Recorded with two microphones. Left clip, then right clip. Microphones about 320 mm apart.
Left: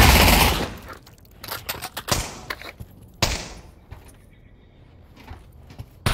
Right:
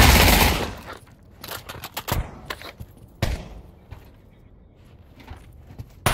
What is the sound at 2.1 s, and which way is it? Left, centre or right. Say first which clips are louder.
Typewriter: left 5 dB; left.